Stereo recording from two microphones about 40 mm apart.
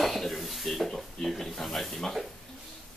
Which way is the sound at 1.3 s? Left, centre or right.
Centre.